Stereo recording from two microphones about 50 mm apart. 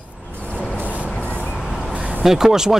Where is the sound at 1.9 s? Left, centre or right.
Right.